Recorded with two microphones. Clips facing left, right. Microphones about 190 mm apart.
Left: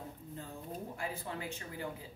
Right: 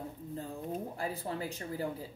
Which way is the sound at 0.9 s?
35° right (ahead or behind).